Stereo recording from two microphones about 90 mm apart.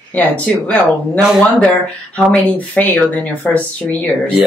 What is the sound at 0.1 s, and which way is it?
Speech, 15° left (ahead or behind).